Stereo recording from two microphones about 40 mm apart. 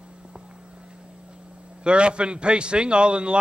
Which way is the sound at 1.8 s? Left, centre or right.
Right.